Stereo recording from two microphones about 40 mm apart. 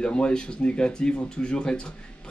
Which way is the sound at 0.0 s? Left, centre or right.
Left.